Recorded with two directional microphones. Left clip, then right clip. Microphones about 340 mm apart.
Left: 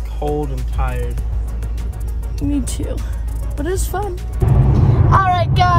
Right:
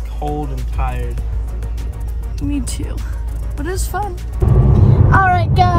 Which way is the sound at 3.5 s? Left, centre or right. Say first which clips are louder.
Left 1 dB; centre.